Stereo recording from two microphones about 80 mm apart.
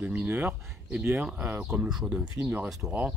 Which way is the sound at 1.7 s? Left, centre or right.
Centre.